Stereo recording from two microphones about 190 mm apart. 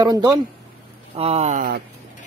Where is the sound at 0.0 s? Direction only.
20° right (ahead or behind).